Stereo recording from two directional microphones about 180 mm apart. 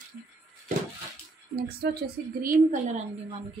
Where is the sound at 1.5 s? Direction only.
60° right (ahead or behind).